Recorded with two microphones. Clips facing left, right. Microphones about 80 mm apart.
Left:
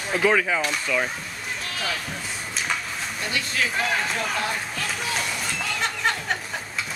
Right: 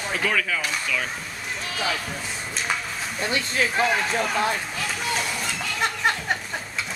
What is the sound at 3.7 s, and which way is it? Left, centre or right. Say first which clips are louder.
Speech: right 5 dB; centre.